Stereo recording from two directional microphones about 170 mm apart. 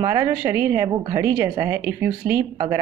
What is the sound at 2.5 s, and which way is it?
Speech, 20° right (ahead or behind).